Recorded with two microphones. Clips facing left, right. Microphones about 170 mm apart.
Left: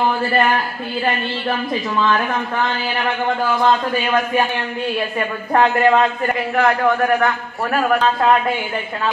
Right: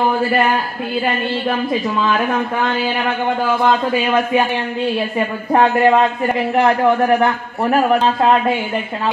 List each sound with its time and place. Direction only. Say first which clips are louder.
5.5 s a man's voice: right 2 dB; 15° right (ahead or behind)